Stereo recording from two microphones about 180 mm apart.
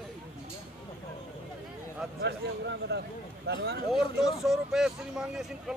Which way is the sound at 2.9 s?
65° right (ahead or behind).